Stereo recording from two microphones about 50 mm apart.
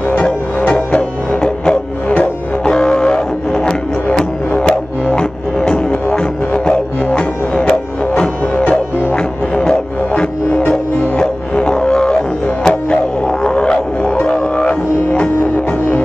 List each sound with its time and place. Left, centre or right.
0.7 s music: centre
7.2 s music: centre